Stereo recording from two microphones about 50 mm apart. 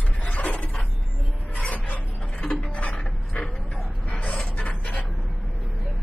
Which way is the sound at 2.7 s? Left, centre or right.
Left.